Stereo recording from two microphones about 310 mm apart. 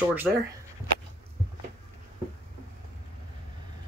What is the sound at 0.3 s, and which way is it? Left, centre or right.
Speech, centre.